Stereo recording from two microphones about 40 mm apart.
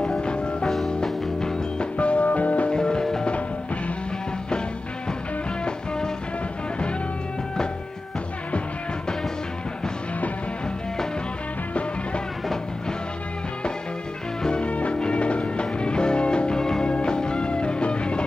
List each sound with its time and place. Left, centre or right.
0.0 s music: left
2.0 s music: left
2.7 s music: centre
14.4 s music: left